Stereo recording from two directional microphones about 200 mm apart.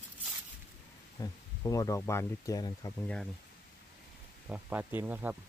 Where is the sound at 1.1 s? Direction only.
15° left (ahead or behind).